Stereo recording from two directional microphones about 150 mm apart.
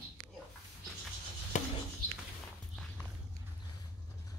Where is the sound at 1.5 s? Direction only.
55° left (ahead or behind).